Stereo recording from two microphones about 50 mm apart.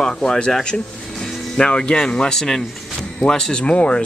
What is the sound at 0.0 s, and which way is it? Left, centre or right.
Speech, centre.